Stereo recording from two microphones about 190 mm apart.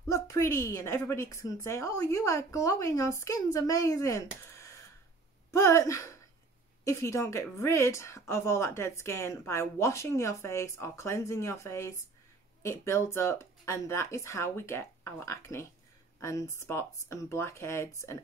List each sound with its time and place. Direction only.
0.1 s a woman's voice: 15° left (ahead or behind)